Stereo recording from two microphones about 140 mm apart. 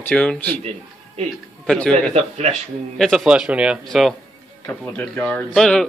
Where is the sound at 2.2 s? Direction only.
50° right (ahead or behind).